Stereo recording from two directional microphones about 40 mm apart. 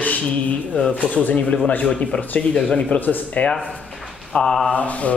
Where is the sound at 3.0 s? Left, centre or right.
Left.